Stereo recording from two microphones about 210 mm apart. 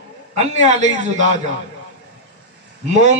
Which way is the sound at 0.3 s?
35° right (ahead or behind).